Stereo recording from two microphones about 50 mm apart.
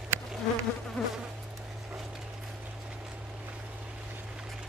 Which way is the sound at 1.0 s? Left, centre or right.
Left.